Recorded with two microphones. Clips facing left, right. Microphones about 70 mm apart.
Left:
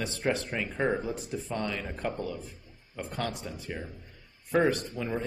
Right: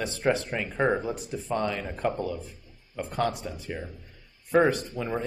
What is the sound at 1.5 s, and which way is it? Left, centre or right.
Speech, centre.